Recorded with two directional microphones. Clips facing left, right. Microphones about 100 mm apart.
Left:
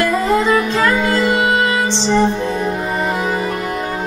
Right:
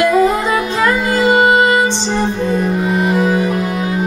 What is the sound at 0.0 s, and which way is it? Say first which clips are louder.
Music: right 3 dB; 10° right (ahead or behind).